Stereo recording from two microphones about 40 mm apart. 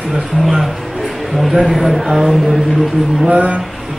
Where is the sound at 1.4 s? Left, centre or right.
Centre.